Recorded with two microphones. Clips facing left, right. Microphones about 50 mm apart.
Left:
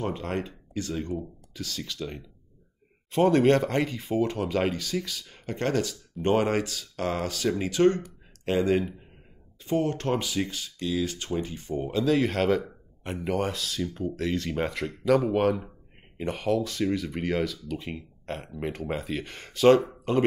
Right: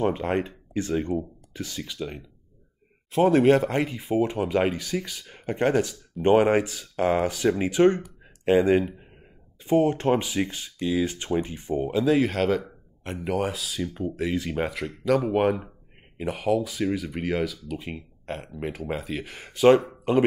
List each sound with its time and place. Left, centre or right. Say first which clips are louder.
0.0 s speech: right 6 dB; right
1.8 s speech: right 2 dB; centre
8.0 s a sound: right 5 dB; centre
9.6 s speech: right 5 dB; centre
12.3 s speech: even; centre
15.4 s speech: right 1 dB; centre
16.2 s speech: right 2 dB; centre